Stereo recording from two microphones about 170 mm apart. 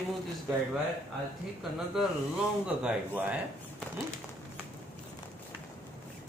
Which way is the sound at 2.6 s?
5° right (ahead or behind).